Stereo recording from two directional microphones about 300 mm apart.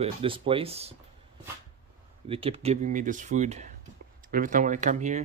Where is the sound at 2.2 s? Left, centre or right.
Centre.